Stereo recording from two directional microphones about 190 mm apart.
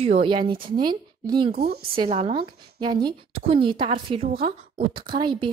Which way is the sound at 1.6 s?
55° right (ahead or behind).